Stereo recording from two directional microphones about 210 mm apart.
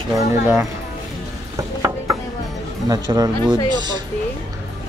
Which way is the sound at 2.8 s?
15° right (ahead or behind).